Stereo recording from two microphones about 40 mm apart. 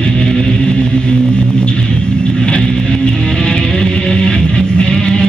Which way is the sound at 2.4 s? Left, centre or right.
Left.